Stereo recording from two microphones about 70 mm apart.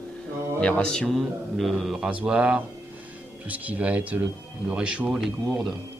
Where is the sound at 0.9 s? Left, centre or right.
Centre.